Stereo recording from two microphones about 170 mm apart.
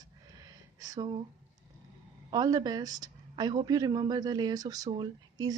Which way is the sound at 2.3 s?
25° right (ahead or behind).